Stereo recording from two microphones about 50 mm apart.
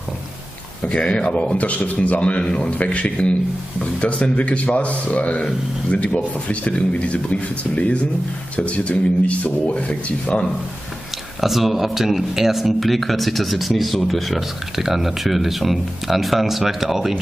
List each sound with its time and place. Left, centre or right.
0.8 s a man's voice: left
11.4 s speech: centre